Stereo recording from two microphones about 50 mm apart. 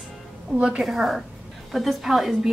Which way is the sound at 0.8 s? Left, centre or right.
Centre.